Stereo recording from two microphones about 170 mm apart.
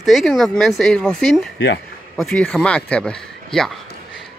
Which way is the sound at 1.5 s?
90° left.